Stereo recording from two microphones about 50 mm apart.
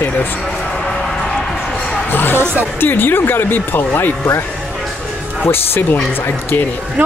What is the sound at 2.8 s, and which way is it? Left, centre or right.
Speech, left.